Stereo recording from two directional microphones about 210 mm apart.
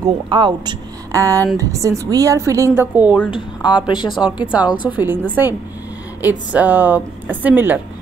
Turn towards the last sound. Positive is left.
turn(degrees=-10)  # may be behind; listen again after turning